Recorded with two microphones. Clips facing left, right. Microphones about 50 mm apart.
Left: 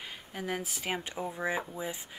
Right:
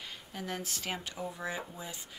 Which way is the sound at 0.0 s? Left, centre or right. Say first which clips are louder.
Left 3 dB; centre.